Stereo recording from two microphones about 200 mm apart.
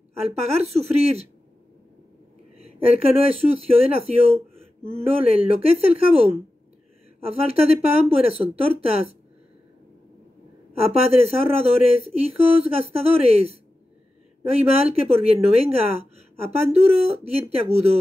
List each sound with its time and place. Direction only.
0.3 s speech: 30° right (ahead or behind)
3.2 s speech: 30° right (ahead or behind)
10.7 s speech: 30° right (ahead or behind)